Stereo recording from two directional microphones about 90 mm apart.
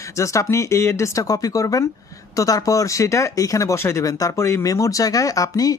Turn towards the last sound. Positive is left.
turn(degrees=40)  # may be behind; listen again after turning